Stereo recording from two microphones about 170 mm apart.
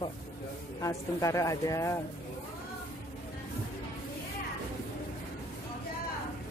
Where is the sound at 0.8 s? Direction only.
20° left (ahead or behind).